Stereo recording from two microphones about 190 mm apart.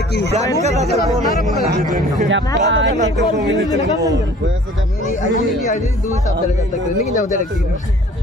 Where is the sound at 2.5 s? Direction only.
75° right (ahead or behind).